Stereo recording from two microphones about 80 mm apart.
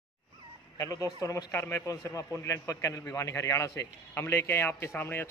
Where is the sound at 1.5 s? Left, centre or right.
Left.